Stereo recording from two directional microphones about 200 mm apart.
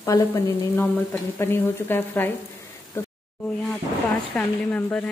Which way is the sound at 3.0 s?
10° left (ahead or behind).